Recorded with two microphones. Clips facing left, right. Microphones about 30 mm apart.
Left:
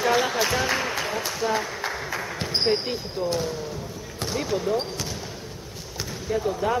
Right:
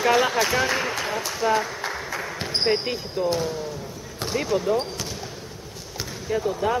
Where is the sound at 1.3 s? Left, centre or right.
Centre.